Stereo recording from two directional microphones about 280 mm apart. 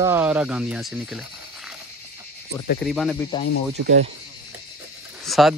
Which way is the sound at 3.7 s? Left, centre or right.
Right.